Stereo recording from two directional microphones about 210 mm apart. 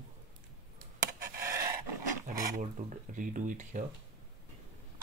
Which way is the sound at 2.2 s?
35° right (ahead or behind).